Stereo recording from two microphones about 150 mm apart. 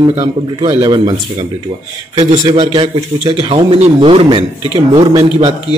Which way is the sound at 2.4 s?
30° right (ahead or behind).